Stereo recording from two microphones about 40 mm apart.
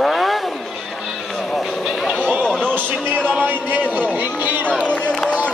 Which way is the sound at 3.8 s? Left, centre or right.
Right.